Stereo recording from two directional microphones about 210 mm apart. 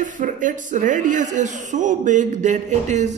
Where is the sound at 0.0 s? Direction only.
40° right (ahead or behind).